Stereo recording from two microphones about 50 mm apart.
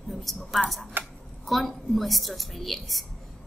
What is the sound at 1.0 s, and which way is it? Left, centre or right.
Speech, right.